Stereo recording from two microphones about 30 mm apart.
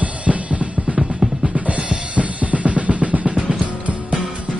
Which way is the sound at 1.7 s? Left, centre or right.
Right.